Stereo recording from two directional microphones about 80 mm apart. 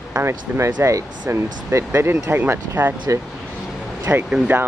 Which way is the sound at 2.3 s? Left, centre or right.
Right.